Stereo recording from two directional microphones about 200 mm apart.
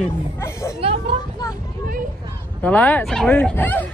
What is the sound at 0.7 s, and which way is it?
Speech, 30° right (ahead or behind).